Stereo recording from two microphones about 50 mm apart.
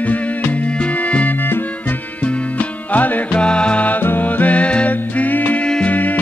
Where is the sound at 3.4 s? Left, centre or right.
Left.